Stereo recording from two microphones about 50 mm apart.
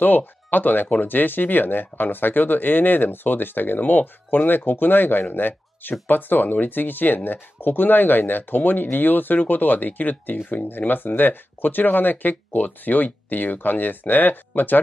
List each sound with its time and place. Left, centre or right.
0.0 s speech: left